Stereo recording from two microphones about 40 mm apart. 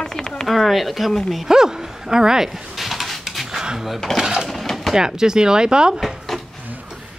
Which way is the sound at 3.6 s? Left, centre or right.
Centre.